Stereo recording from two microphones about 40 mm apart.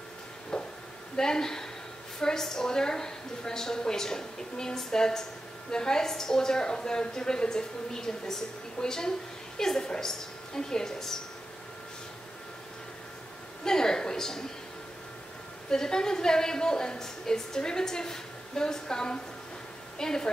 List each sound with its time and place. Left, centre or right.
0.5 s chop: centre
1.1 s a woman's voice: centre
13.7 s a woman's voice: centre
15.7 s a woman's voice: centre